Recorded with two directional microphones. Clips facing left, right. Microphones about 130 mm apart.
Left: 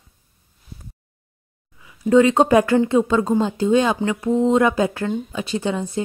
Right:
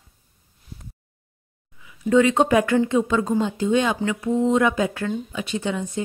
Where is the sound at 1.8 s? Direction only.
35° left (ahead or behind).